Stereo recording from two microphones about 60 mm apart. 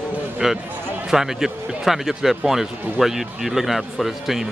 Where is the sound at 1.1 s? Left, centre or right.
Centre.